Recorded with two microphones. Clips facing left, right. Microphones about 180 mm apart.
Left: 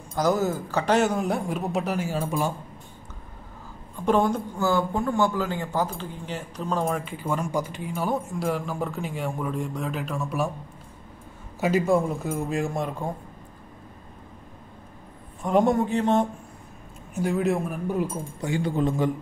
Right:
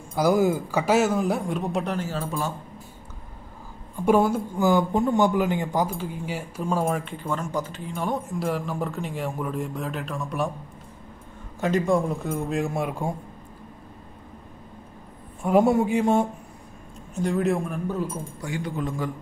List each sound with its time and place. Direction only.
0.1 s speech: 10° right (ahead or behind); by 2.5 s 15° left (ahead or behind)
3.9 s speech: 10° right (ahead or behind)
7.2 s speech: 10° left (ahead or behind)
11.6 s speech: 5° left (ahead or behind)
15.4 s speech: 5° right (ahead or behind)
17.1 s speech: 5° left (ahead or behind)
18.4 s a man's voice: 30° left (ahead or behind)